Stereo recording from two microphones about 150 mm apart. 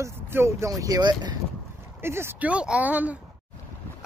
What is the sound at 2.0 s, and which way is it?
Speech, 15° right (ahead or behind).